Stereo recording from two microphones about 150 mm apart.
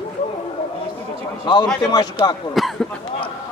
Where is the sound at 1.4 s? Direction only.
30° left (ahead or behind).